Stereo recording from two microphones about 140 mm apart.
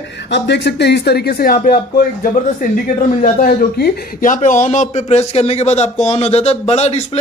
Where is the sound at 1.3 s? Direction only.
90° left.